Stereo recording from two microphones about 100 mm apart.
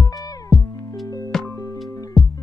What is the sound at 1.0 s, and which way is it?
Music, 35° left (ahead or behind).